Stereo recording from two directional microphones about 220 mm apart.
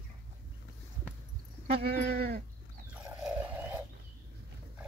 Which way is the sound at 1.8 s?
45° right (ahead or behind).